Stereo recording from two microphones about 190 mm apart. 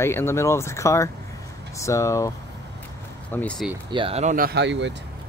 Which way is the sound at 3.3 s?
5° left (ahead or behind).